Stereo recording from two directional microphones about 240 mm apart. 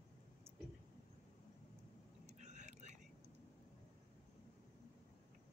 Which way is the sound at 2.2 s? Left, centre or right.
Right.